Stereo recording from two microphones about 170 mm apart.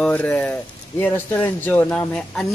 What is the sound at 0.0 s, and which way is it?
A man's voice, 5° left (ahead or behind).